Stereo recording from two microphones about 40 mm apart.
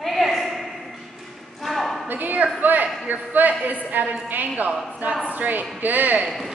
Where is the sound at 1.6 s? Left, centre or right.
Centre.